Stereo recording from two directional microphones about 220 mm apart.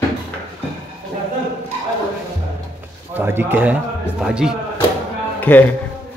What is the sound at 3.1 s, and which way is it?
Speech, 10° right (ahead or behind).